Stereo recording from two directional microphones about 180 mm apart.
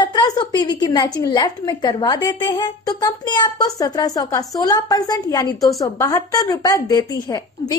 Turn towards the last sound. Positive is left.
turn(degrees=20)  # may be behind; listen again after turning